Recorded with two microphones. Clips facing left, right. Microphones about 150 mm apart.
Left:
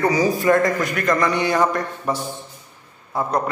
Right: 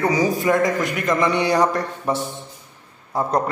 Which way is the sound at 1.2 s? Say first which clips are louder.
Right 4 dB; 30° right (ahead or behind).